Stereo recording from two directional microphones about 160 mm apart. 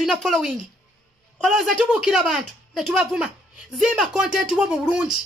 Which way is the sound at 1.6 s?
Centre (ahead or behind).